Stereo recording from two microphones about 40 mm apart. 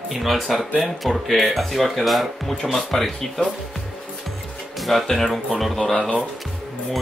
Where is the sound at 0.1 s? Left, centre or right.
Centre.